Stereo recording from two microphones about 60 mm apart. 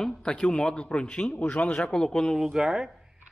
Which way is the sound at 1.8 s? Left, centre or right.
Centre.